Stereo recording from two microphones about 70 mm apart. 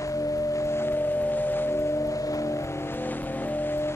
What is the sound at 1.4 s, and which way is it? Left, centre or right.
Music, left.